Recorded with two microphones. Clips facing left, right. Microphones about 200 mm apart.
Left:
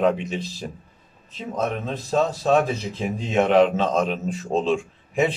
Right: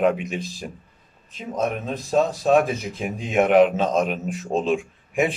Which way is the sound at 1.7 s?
10° right (ahead or behind).